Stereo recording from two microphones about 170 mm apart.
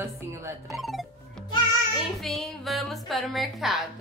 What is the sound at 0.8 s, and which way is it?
Music, centre (ahead or behind).